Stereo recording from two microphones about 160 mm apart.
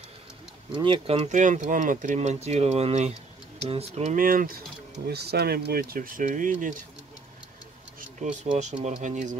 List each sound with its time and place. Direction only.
0.7 s speech: 35° right (ahead or behind)
4.2 s speech: 60° right (ahead or behind)
5.0 s speech: 85° right; by 6.8 s 55° right (ahead or behind)
8.0 s speech: 50° right (ahead or behind)